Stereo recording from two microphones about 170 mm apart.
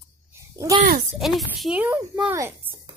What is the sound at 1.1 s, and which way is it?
A child's voice, centre (ahead or behind).